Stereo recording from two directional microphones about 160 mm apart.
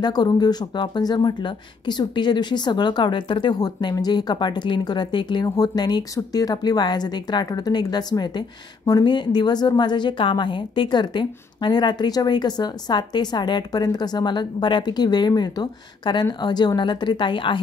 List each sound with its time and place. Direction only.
0.0 s speech: 25° left (ahead or behind)